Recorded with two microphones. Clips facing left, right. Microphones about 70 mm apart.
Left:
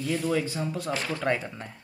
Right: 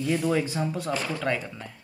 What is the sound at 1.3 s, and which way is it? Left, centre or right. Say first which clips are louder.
Speech: left 1 dB; left.